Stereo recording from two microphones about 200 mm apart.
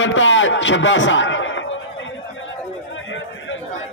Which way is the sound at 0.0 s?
70° left (ahead or behind).